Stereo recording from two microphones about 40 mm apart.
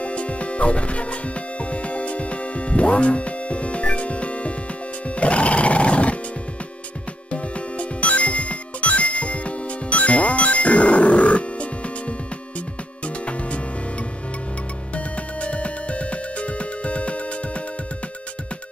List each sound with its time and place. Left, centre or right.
0.0 s music: left
7.7 s music: left
15.0 s music: left